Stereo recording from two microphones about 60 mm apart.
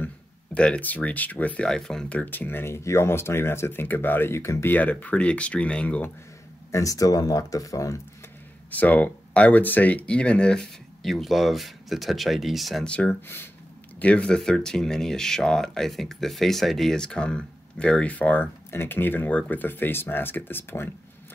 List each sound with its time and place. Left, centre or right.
0.7 s speech: left
1.7 s speech: centre
2.1 s speech: left
4.4 s speech: left
4.6 s speech: left
6.7 s speech: left
8.6 s speech: left
11.0 s speech: centre
12.8 s speech: left; by 16.9 s centre
16.9 s speech: centre; by 20.9 s left